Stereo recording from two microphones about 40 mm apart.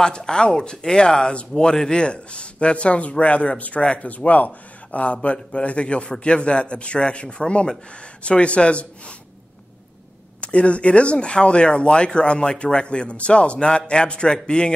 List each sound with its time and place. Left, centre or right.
0.0 s speech: centre
4.1 s speech: left
10.4 s speech: left